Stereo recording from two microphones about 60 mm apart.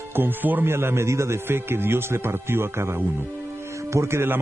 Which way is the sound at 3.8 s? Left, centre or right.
Right.